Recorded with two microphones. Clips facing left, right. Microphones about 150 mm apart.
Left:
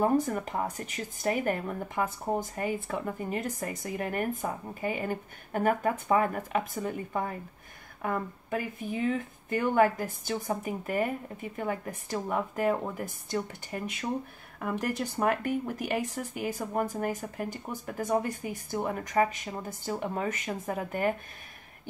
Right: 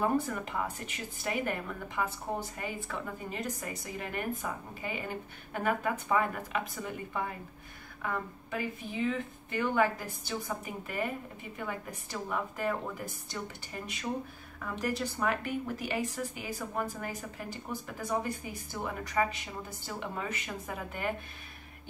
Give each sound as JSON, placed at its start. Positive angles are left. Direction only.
{"t": 0.3, "sound": "speech", "side_deg": 40}
{"t": 14.6, "sound": "speech", "side_deg": 50}